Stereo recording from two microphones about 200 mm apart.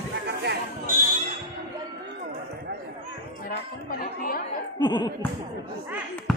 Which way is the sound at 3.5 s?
45° left (ahead or behind).